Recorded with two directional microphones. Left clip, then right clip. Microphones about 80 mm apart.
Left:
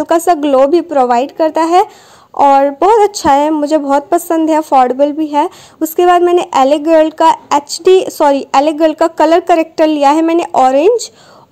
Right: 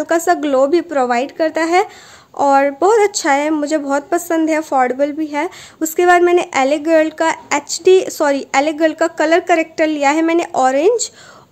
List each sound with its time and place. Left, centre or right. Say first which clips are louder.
0.0 s a woman's voice: left 4 dB; left